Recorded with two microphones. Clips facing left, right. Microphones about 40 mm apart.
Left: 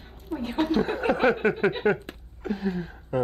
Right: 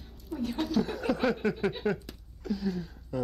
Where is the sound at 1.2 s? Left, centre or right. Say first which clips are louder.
Left 7 dB; left.